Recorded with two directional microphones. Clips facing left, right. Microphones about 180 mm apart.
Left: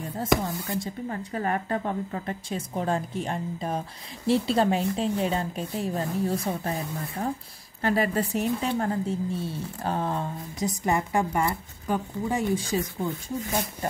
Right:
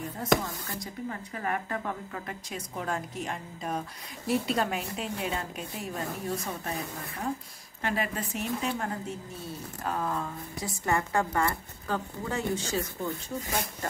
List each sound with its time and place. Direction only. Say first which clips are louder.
0.7 s a woman's voice: left 5 dB; 35° left (ahead or behind)
7.8 s a woman's voice: left 7 dB; 35° left (ahead or behind)
10.7 s speech: left 2 dB; 15° left (ahead or behind)